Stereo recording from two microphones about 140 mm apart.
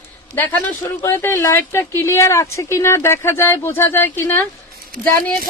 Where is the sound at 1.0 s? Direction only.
20° left (ahead or behind).